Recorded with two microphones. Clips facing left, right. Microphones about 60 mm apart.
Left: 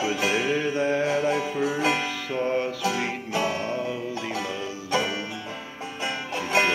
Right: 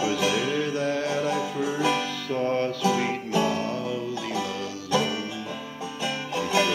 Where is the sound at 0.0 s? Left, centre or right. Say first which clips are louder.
Even; left.